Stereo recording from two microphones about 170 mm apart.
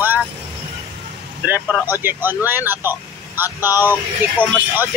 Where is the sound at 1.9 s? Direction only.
10° right (ahead or behind).